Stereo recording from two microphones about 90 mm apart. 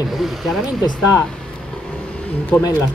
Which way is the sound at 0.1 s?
Centre (ahead or behind).